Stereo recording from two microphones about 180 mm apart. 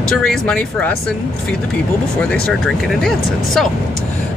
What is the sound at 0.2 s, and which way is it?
Speech, 5° left (ahead or behind).